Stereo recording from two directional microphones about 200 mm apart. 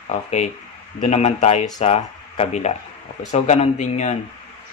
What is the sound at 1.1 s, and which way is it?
Speech, 35° left (ahead or behind).